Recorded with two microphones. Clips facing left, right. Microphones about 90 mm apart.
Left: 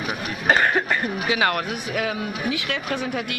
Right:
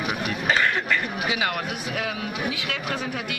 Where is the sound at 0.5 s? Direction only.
45° left (ahead or behind).